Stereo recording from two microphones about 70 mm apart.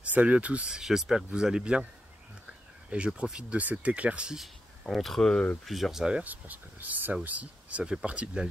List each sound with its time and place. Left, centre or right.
0.0 s speech: centre
3.2 s speech: centre
4.4 s speech: centre
5.7 s speech: centre